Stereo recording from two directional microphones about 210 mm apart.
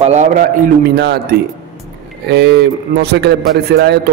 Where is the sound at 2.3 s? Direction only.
55° right (ahead or behind).